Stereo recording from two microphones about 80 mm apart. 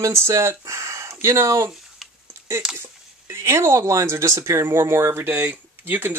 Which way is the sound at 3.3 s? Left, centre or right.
Right.